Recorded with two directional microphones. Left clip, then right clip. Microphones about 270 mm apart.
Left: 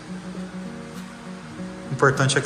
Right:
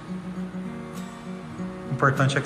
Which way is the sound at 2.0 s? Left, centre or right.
Centre.